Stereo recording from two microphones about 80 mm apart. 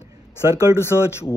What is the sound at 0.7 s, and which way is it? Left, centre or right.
Speech, left.